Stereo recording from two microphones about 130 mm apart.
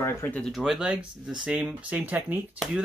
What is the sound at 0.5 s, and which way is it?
Speech, 5° right (ahead or behind).